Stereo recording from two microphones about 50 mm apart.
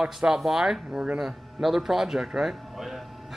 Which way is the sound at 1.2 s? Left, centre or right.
Centre.